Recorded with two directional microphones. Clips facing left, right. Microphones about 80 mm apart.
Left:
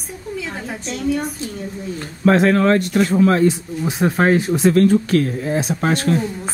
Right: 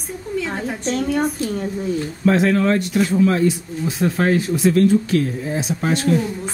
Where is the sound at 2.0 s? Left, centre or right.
Left.